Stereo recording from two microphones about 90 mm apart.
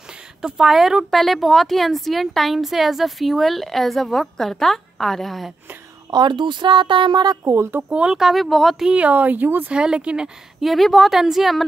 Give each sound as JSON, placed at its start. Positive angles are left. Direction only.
{"t": 0.4, "sound": "speech", "side_deg": -5}
{"t": 6.1, "sound": "speech", "side_deg": -60}
{"t": 7.4, "sound": "speech", "side_deg": -30}
{"t": 7.9, "sound": "speech", "side_deg": -10}